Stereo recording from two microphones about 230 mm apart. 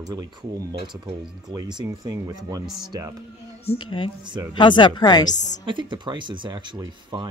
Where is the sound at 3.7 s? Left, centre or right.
Left.